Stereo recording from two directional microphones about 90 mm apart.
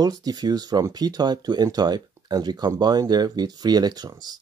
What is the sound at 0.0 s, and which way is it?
Speech, 45° right (ahead or behind).